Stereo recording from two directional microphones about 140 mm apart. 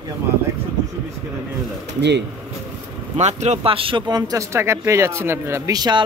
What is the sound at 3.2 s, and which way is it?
Speech, 55° right (ahead or behind).